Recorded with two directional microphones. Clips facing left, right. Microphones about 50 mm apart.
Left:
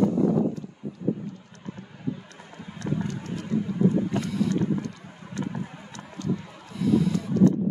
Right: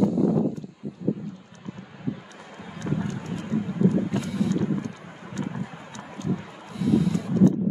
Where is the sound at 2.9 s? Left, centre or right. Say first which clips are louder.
Right 1 dB; right.